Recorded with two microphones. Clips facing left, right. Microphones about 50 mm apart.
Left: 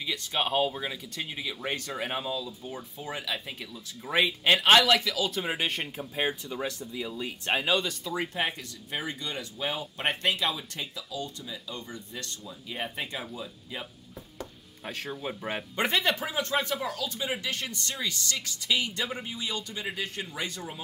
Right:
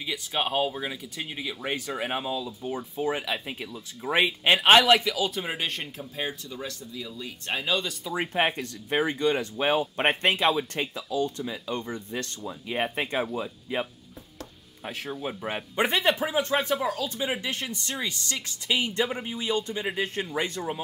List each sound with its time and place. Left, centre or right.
0.0 s speech: centre
5.2 s speech: centre
6.1 s speech: left
8.2 s speech: right
14.9 s speech: centre
15.8 s speech: centre